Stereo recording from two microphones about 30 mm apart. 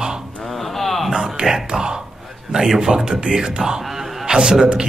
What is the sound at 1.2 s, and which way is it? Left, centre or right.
Speech, right.